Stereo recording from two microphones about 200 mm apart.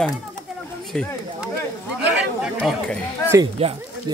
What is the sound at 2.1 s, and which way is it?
Chatter, centre (ahead or behind).